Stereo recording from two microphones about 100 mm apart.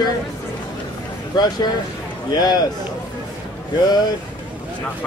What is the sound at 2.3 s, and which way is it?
Speech, 40° left (ahead or behind).